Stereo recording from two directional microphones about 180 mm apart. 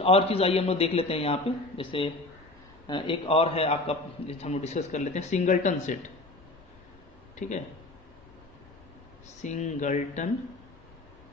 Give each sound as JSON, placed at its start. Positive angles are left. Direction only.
{"t": 0.0, "sound": "a man's voice", "side_deg": 35}
{"t": 7.3, "sound": "speech", "side_deg": 40}
{"t": 9.4, "sound": "a man's voice", "side_deg": 40}